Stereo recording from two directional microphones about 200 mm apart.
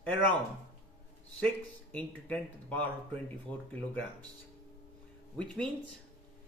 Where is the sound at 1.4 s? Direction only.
5° left (ahead or behind).